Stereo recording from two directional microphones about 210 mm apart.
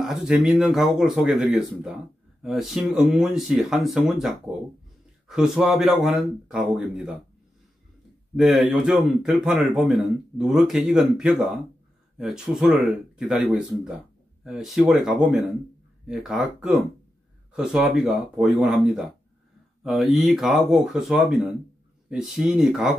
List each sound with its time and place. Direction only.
0.0 s a man's voice: centre (ahead or behind)
8.4 s a man's voice: centre (ahead or behind)
19.8 s a man's voice: centre (ahead or behind)